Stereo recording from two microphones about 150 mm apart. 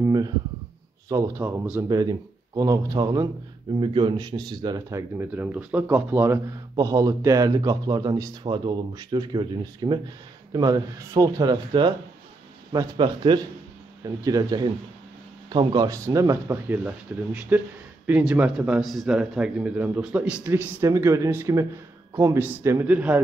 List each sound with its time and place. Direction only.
0.0 s speech: 25° right (ahead or behind)